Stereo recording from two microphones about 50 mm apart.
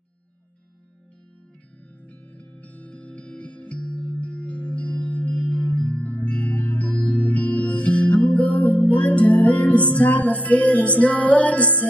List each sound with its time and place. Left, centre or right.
2.0 s music: left